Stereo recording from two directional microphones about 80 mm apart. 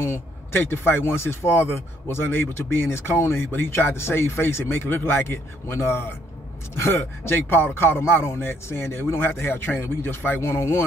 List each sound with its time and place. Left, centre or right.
0.0 s speech: left